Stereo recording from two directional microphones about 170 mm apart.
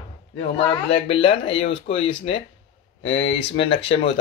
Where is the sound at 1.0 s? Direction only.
35° left (ahead or behind).